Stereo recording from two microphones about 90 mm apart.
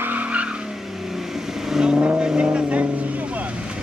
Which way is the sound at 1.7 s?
10° right (ahead or behind).